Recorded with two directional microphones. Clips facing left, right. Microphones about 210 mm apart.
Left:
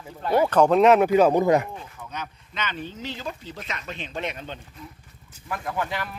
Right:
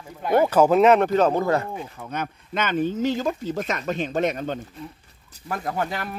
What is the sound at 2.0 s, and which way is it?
Speech, 50° right (ahead or behind).